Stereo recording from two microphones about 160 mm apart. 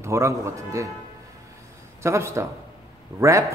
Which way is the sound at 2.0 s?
15° right (ahead or behind).